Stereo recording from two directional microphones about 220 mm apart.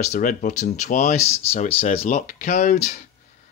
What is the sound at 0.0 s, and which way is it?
Speech, 35° left (ahead or behind).